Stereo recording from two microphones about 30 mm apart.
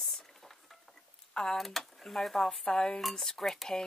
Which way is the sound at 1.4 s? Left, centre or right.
Left.